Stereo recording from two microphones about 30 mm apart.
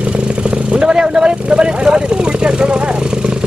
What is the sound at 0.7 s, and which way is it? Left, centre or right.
Vehicle, right.